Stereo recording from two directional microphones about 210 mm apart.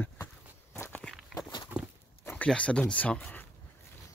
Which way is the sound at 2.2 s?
5° left (ahead or behind).